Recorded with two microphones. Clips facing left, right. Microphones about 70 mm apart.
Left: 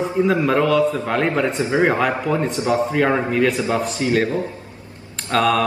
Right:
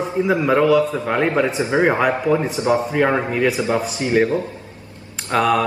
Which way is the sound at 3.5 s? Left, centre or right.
Right.